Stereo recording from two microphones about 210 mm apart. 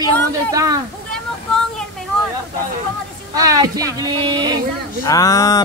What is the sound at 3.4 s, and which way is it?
Speech, 15° right (ahead or behind).